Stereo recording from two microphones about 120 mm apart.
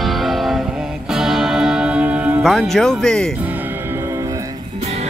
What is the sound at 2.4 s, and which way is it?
Speech, centre (ahead or behind).